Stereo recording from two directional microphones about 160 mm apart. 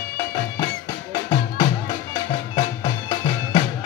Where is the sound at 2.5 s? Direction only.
30° left (ahead or behind).